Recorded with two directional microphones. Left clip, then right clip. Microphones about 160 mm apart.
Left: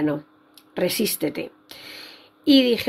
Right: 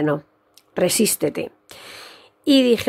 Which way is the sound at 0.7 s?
55° right (ahead or behind).